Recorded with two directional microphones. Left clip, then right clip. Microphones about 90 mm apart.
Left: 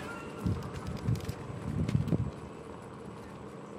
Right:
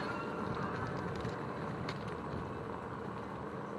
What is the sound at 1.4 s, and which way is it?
Vehicle, 30° left (ahead or behind).